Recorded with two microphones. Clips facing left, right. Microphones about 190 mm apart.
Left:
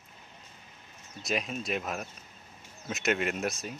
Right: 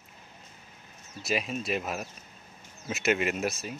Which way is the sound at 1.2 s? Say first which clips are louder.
Right 2 dB; 5° right (ahead or behind).